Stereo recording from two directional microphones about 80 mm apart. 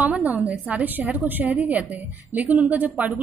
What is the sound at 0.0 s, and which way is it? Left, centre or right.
A woman's voice, right.